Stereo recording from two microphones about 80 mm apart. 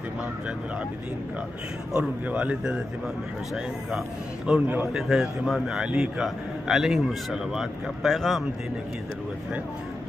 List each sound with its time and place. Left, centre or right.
2.0 s a man's voice: centre
4.5 s a man's voice: right
4.9 s a man's voice: centre